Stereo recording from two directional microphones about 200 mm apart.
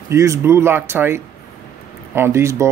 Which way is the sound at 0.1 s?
15° right (ahead or behind).